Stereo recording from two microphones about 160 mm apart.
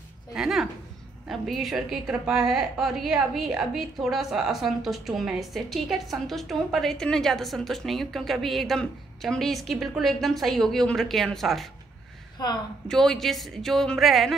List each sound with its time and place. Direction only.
0.3 s a sound: 5° right (ahead or behind)
1.3 s a woman's voice: centre (ahead or behind)
12.4 s a woman's voice: 25° left (ahead or behind)
12.8 s a woman's voice: 5° left (ahead or behind)